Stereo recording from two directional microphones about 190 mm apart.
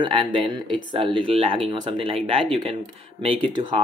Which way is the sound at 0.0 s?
25° right (ahead or behind).